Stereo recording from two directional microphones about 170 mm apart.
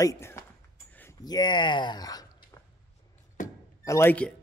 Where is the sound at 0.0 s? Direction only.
15° left (ahead or behind).